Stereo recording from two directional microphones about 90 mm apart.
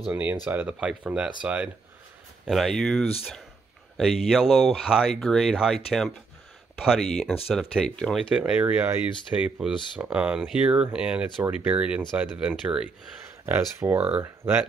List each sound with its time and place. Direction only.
0.1 s speech: 20° right (ahead or behind)
2.5 s speech: 5° left (ahead or behind)
4.0 s speech: 5° right (ahead or behind)
8.4 s speech: 15° right (ahead or behind)
13.5 s speech: 25° right (ahead or behind)